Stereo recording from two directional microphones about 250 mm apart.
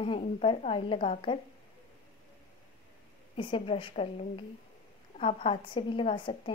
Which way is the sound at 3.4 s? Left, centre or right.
Centre.